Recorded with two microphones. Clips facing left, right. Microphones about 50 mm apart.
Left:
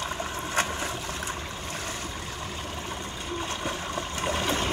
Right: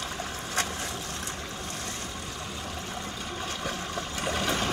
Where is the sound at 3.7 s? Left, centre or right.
Centre.